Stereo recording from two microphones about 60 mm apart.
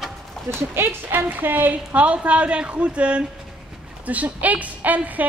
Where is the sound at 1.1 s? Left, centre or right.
Right.